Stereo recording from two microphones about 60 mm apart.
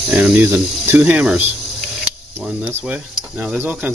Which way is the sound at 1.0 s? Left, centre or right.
Right.